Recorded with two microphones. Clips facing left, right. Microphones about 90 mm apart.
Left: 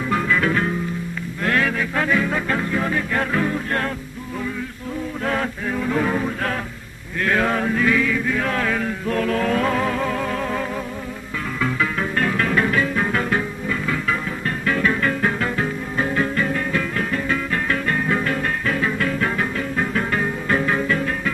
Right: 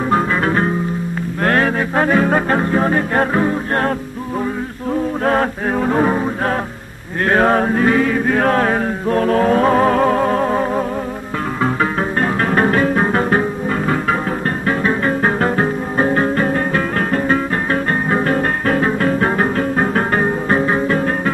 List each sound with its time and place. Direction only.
0.1 s music: 35° right (ahead or behind)
5.2 s music: 45° right (ahead or behind)
7.2 s chant: 45° right (ahead or behind)
11.6 s music: 40° right (ahead or behind)
14.7 s music: 30° right (ahead or behind)